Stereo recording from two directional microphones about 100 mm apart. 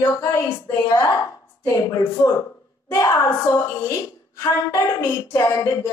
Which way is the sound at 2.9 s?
30° left (ahead or behind).